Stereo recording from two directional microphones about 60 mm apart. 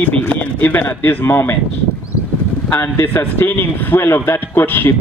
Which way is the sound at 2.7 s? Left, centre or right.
Left.